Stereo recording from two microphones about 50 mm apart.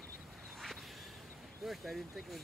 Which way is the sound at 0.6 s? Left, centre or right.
Centre.